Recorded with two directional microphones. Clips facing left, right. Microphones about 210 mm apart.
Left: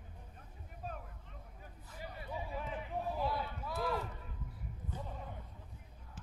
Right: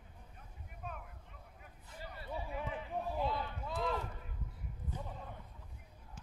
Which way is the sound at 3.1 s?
20° right (ahead or behind).